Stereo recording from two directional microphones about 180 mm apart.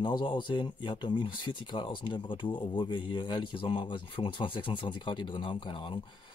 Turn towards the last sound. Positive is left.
turn(degrees=30)  # may be behind; listen again after turning